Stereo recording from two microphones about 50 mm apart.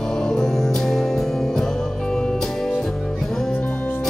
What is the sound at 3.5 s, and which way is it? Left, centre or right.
Music, left.